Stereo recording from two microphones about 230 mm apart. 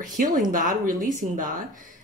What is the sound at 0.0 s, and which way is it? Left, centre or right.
Speech, right.